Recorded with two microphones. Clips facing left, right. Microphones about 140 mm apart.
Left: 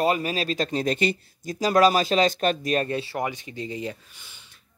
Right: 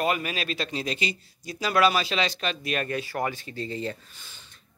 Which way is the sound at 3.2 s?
20° left (ahead or behind).